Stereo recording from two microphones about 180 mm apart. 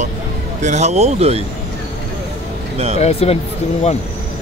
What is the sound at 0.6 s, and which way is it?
Speech, 40° right (ahead or behind).